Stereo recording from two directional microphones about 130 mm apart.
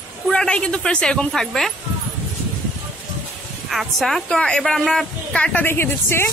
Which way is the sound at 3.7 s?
Centre (ahead or behind).